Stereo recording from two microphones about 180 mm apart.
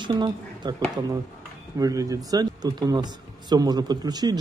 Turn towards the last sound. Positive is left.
turn(degrees=-20)  # may be behind; listen again after turning